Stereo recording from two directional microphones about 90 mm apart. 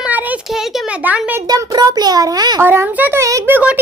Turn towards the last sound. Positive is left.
turn(degrees=-15)  # may be behind; listen again after turning